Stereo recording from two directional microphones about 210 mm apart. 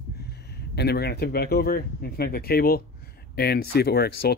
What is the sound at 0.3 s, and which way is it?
Speech, 50° left (ahead or behind).